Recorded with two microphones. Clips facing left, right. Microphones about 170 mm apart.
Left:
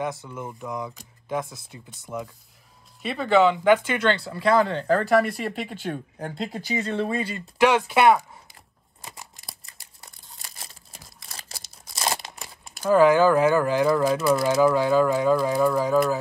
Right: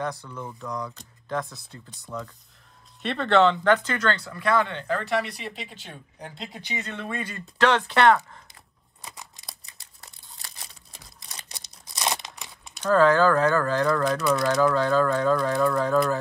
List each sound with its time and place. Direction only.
0.1 s speech: 20° left (ahead or behind)
1.7 s speech: 10° left (ahead or behind)
3.0 s speech: 5° left (ahead or behind); by 5.3 s 45° left (ahead or behind)
5.4 s speech: 55° left (ahead or behind); by 7.4 s 30° left (ahead or behind)
7.5 s speech: 10° left (ahead or behind)
9.0 s a sound: centre (ahead or behind)
12.9 s speech: 10° left (ahead or behind)